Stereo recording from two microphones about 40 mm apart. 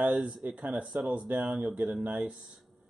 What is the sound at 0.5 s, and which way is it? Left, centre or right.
Speech, right.